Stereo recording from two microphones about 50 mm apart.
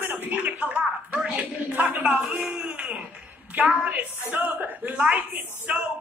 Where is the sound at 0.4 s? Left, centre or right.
Right.